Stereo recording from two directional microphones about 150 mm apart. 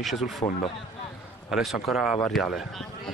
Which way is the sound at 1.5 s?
Centre (ahead or behind).